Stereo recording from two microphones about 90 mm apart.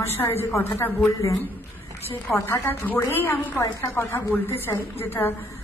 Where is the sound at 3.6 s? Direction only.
35° left (ahead or behind).